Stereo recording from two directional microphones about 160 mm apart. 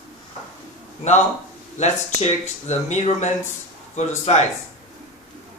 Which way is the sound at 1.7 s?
45° left (ahead or behind).